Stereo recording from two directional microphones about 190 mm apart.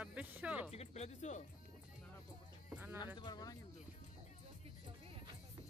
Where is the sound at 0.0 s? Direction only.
5° right (ahead or behind).